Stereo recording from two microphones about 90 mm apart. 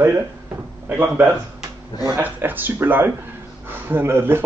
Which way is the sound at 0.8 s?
20° right (ahead or behind).